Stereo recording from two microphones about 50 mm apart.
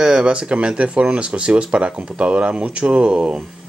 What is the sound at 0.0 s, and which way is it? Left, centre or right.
Speech, centre.